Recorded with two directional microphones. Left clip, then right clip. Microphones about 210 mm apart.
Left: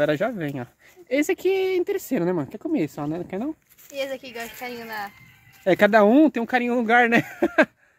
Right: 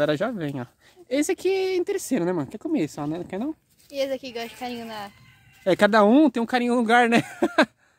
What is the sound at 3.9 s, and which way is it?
Speech, 60° right (ahead or behind).